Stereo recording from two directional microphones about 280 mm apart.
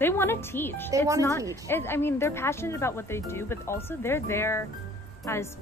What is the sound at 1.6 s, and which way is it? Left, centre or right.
Speech, centre.